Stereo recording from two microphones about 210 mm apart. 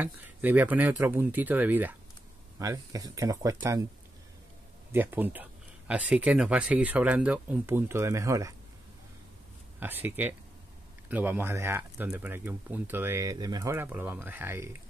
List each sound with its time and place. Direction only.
0.0 s speech: 10° right (ahead or behind)
4.9 s speech: 10° right (ahead or behind)
9.8 s speech: 10° right (ahead or behind)